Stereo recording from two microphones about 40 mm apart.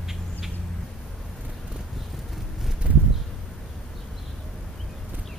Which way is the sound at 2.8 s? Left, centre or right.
Right.